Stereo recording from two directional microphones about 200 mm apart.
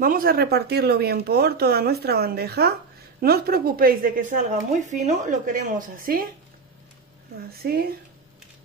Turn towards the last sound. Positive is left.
turn(degrees=-50)  # may be behind; listen again after turning